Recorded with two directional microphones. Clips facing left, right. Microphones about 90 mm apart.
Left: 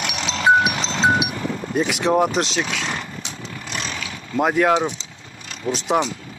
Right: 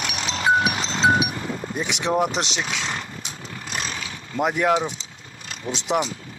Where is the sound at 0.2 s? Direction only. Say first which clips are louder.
Left 4 dB; 35° left (ahead or behind).